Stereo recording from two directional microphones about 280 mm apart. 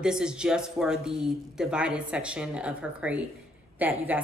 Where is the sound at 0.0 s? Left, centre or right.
Centre.